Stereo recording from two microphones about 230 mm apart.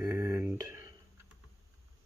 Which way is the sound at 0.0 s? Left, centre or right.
Centre.